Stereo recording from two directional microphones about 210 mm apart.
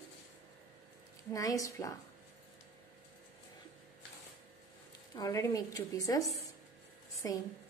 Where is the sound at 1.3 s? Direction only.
15° left (ahead or behind).